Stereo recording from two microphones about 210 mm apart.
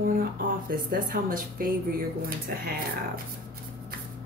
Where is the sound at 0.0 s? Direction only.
45° right (ahead or behind).